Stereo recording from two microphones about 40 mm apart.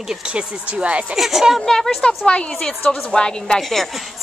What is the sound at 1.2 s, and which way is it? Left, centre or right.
Speech, centre.